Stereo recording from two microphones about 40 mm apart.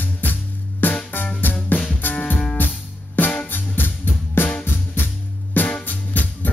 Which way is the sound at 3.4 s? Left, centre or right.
Left.